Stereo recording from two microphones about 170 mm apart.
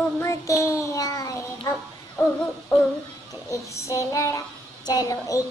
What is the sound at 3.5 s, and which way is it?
Child singing, 20° left (ahead or behind).